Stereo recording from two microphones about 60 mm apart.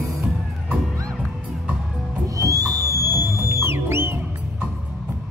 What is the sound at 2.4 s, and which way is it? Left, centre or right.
Music, right.